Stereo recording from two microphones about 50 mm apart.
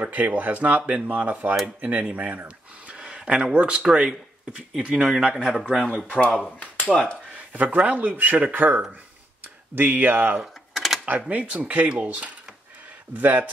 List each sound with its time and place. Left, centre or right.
0.0 s speech: right
2.4 s speech: centre
6.0 s speech: left
6.6 s a sound: centre
7.3 s speech: right
10.4 s typing: centre
11.1 s speech: right
13.1 s speech: right